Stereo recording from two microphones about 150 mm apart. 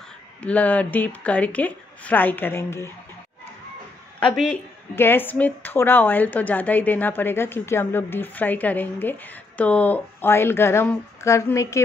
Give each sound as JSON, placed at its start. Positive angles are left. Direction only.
{"t": 0.4, "sound": "a woman's voice", "side_deg": 10}
{"t": 4.9, "sound": "a woman's voice", "side_deg": 15}